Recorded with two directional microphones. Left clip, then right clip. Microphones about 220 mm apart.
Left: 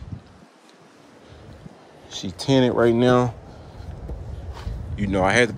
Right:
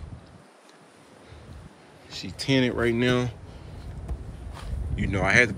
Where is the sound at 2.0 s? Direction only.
25° left (ahead or behind).